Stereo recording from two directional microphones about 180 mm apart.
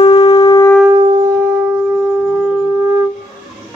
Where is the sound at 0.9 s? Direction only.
25° right (ahead or behind).